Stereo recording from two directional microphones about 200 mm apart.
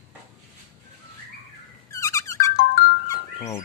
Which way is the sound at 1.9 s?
15° left (ahead or behind).